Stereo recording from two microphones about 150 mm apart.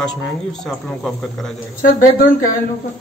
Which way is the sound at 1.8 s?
70° left (ahead or behind).